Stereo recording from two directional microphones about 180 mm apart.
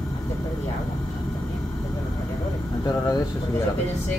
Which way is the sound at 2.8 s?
20° left (ahead or behind).